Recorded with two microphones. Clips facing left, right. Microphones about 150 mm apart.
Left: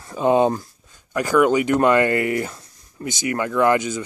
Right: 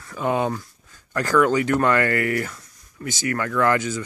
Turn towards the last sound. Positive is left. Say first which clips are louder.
# left 3 dB
turn(degrees=20)  # may be behind; listen again after turning